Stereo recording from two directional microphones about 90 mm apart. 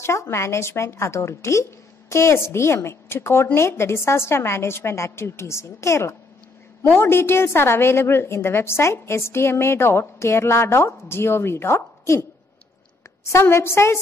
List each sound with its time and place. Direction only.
0.0 s a woman's voice: 30° left (ahead or behind)
13.3 s a woman's voice: 30° left (ahead or behind)